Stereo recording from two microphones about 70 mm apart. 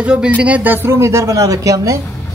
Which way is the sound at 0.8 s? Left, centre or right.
Right.